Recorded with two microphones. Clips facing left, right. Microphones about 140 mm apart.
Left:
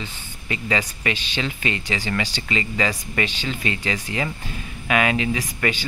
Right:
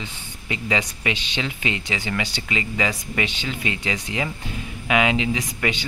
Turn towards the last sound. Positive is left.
turn(degrees=-15)  # may be behind; listen again after turning